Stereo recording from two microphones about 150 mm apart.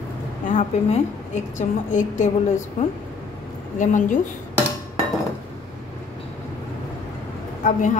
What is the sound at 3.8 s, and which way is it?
Speech, 55° left (ahead or behind).